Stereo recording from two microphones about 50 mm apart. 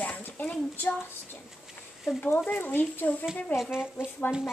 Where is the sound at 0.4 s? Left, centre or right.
Left.